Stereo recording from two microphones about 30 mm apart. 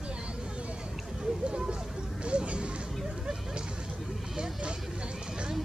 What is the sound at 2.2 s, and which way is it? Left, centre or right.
Music, right.